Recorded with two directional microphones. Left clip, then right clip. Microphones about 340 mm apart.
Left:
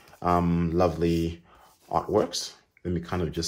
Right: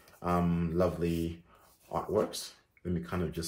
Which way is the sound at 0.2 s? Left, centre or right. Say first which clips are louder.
Left 7 dB; left.